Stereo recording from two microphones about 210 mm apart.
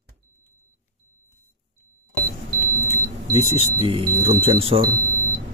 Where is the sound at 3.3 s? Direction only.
25° right (ahead or behind).